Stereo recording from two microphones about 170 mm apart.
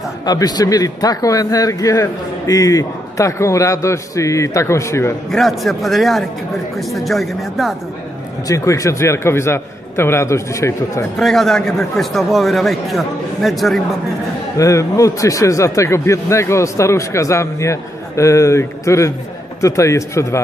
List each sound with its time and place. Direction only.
0.2 s a man's voice: 25° left (ahead or behind)
5.3 s a man's voice: centre (ahead or behind)
8.5 s speech: 20° left (ahead or behind)
11.1 s a man's voice: centre (ahead or behind)
14.6 s speech: 20° left (ahead or behind)